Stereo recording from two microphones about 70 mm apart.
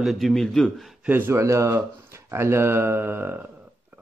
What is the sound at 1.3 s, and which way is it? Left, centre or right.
Speech, right.